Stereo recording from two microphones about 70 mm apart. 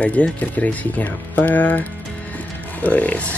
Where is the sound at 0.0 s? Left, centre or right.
Centre.